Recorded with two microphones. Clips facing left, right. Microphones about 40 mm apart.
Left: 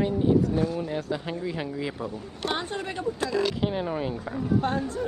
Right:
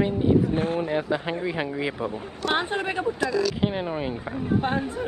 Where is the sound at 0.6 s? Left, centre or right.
Right.